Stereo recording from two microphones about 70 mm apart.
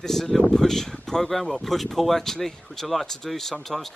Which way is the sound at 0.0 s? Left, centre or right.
Centre.